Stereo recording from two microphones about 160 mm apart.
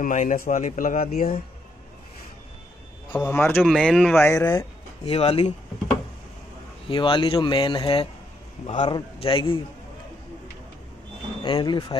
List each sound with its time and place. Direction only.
0.0 s a man's voice: 55° left (ahead or behind)
3.1 s speech: 15° left (ahead or behind)
4.2 s speech: 15° left (ahead or behind)
5.0 s speech: 40° left (ahead or behind)
6.9 s speech: 30° left (ahead or behind)
11.4 s speech: 30° left (ahead or behind)